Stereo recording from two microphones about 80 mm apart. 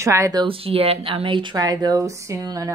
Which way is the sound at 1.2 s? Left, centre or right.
Right.